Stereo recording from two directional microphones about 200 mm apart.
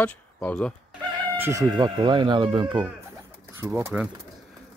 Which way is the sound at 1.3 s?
15° right (ahead or behind).